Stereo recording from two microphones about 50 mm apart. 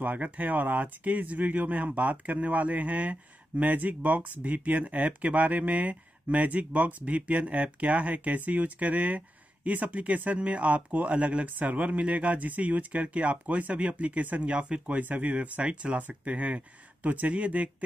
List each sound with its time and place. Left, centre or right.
0.0 s speech: right